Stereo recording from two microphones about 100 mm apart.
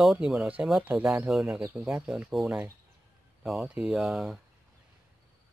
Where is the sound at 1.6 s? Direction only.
20° right (ahead or behind).